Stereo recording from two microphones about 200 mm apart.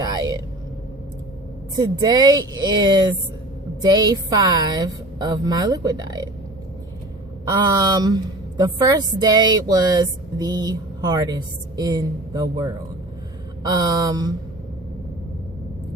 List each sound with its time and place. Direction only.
0.0 s a sound: 20° right (ahead or behind)
1.8 s a woman's voice: 20° right (ahead or behind)
7.4 s a woman's voice: 20° right (ahead or behind)